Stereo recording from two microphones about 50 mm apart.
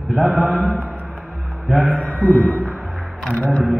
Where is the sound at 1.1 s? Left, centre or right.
Centre.